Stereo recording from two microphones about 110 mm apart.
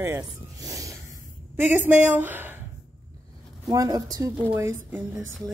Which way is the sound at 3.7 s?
35° right (ahead or behind).